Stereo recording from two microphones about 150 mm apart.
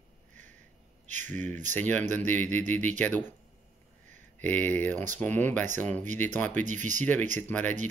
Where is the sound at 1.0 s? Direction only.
55° right (ahead or behind).